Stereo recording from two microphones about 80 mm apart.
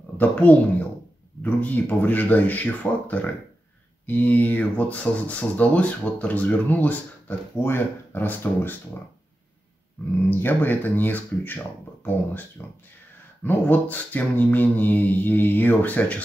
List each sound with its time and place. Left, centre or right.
0.2 s a child's voice: centre
10.0 s speech: left